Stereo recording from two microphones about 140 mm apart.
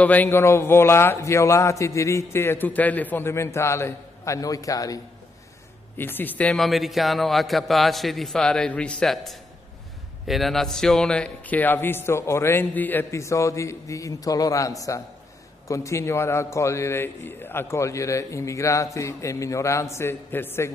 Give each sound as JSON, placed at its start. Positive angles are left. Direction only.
{"t": 0.0, "sound": "a man's voice", "side_deg": 10}
{"t": 5.9, "sound": "a man's voice", "side_deg": 15}